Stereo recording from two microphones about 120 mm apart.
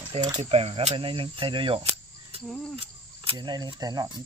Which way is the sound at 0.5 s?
60° right (ahead or behind).